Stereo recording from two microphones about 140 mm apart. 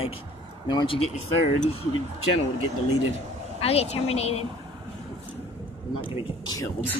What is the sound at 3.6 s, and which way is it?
Speech, 45° left (ahead or behind).